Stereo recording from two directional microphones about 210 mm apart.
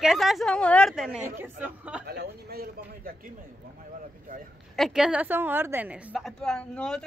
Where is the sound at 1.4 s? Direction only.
5° right (ahead or behind).